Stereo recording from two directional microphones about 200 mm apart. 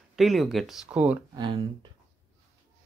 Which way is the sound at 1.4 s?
20° right (ahead or behind).